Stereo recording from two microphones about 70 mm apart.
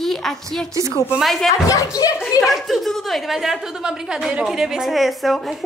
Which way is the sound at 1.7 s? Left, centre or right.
Left.